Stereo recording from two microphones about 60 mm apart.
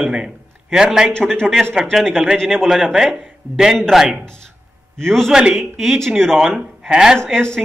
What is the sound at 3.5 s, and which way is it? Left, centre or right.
Speech, right.